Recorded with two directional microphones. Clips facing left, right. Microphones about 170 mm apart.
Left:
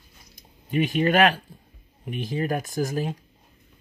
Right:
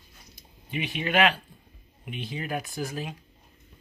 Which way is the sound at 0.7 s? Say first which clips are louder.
Left 8 dB; 45° left (ahead or behind).